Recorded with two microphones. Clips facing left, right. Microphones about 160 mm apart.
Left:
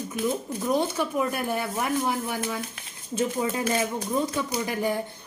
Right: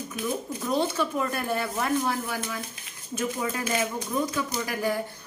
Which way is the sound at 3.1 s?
25° left (ahead or behind).